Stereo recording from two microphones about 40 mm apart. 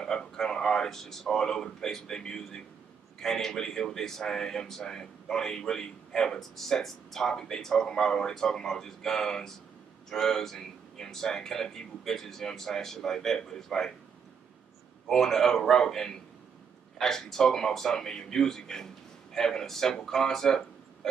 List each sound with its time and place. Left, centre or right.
0.0 s speech: centre
15.0 s speech: centre